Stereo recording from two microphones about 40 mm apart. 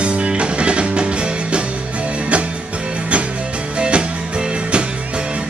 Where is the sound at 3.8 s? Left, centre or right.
Right.